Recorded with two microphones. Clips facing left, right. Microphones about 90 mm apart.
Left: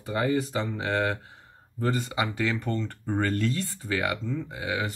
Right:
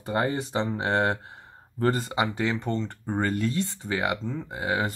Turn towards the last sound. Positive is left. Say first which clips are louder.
# right 3 dB
turn(degrees=-35)  # may be behind; listen again after turning